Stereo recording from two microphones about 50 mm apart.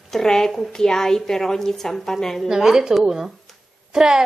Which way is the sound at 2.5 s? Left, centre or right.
Centre.